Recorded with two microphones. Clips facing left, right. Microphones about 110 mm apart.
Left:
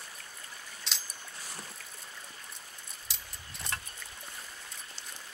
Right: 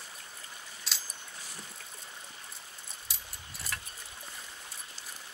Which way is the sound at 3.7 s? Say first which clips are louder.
Left 2 dB; 35° left (ahead or behind).